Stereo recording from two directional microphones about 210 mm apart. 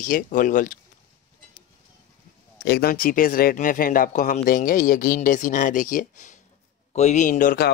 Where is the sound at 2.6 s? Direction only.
50° left (ahead or behind).